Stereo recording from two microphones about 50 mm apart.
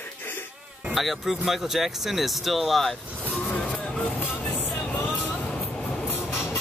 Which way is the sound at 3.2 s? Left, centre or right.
Left.